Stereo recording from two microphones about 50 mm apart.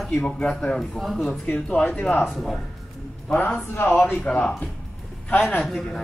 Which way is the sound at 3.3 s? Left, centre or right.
Left.